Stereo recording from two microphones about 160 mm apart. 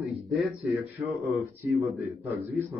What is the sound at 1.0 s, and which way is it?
Speech, centre (ahead or behind).